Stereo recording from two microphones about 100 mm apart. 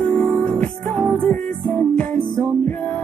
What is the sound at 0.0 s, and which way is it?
Music, 10° left (ahead or behind).